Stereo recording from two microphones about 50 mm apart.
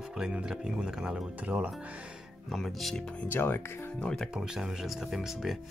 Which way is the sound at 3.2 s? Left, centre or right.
Left.